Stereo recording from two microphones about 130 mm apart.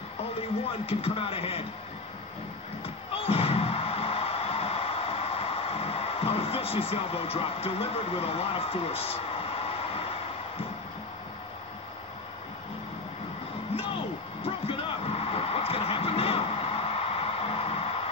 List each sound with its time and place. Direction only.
0.7 s speech: 50° left (ahead or behind)
3.2 s music: 50° left (ahead or behind)
14.7 s music: 45° left (ahead or behind)